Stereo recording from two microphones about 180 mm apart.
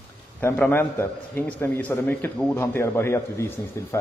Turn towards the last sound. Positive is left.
turn(degrees=15)  # may be behind; listen again after turning